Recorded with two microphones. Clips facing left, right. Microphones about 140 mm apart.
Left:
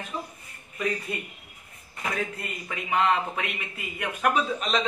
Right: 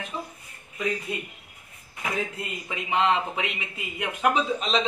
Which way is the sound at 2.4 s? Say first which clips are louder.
Right 1 dB; 20° right (ahead or behind).